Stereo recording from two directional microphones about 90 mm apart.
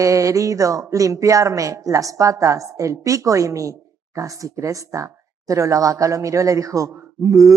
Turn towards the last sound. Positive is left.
turn(degrees=-35)  # may be behind; listen again after turning